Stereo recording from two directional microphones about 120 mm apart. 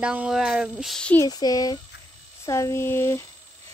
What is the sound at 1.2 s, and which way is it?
Speech, 30° left (ahead or behind).